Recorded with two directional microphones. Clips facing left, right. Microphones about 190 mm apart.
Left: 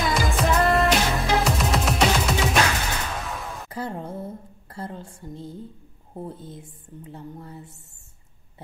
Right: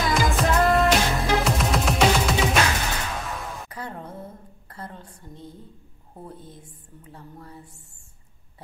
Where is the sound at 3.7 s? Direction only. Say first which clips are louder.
Left 5 dB; 30° left (ahead or behind).